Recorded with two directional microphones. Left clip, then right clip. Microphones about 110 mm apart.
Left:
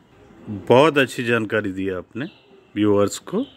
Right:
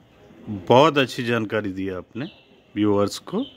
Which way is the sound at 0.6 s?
20° right (ahead or behind).